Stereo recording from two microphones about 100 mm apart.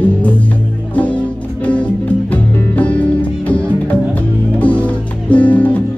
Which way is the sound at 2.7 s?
15° left (ahead or behind).